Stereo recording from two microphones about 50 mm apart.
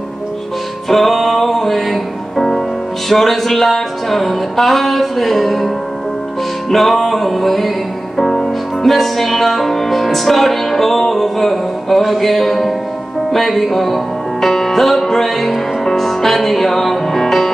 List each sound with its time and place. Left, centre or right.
0.8 s music: centre
6.7 s music: centre